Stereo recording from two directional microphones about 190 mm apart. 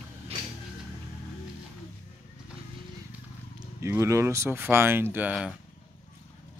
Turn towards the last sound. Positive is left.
turn(degrees=-5)  # may be behind; listen again after turning